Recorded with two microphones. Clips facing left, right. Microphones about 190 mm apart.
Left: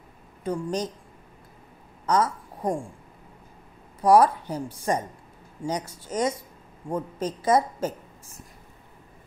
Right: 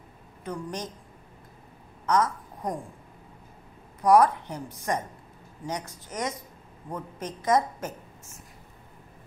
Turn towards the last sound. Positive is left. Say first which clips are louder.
# left 3 dB
turn(degrees=30)  # may be behind; listen again after turning